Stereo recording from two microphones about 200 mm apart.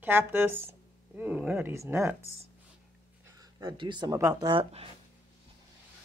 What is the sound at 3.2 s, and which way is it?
Speech, 20° right (ahead or behind).